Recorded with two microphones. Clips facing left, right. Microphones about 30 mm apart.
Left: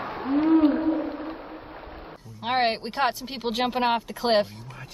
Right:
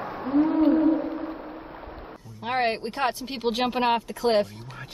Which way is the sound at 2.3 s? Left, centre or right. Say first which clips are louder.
Left 1 dB; left.